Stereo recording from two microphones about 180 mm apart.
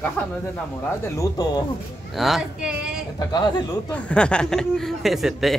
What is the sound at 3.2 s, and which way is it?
Speech, 25° left (ahead or behind).